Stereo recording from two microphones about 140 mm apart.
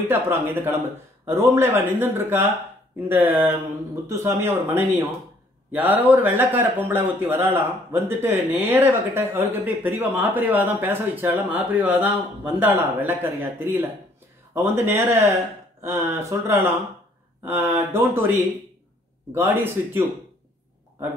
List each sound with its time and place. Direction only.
0.0 s a man's voice: 15° right (ahead or behind)